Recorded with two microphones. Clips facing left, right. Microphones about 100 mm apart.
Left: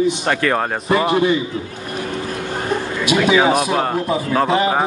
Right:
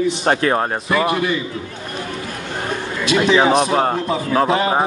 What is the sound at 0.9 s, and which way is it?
Speech, 30° left (ahead or behind).